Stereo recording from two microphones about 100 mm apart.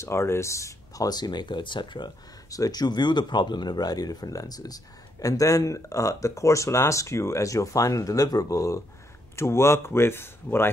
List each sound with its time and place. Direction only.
0.0 s speech: 25° left (ahead or behind); by 2.1 s 50° left (ahead or behind)
2.5 s speech: 40° left (ahead or behind); by 10.7 s 25° left (ahead or behind)